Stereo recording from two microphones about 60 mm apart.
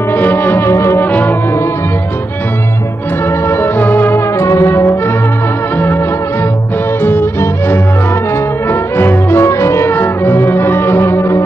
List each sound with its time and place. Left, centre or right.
0.1 s music: left
0.7 s brass instrument: left
1.0 s music: left
3.3 s music: left
4.4 s brass instrument: left
5.8 s music: left
9.8 s music: left